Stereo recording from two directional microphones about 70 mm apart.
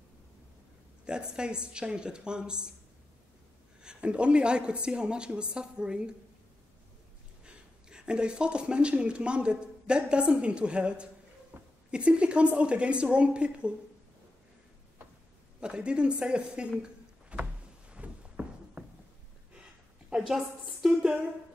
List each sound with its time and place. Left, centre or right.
1.0 s a woman's voice: centre
3.8 s a woman's voice: centre
7.4 s speech: centre
11.5 s a sound: right
11.9 s a woman's voice: centre
15.6 s a woman's voice: centre
16.8 s a sound: centre